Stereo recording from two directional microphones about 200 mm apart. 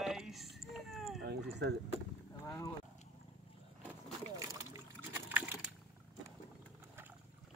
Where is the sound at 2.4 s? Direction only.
15° left (ahead or behind).